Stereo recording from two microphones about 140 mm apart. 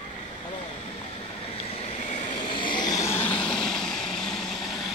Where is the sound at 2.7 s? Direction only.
25° left (ahead or behind).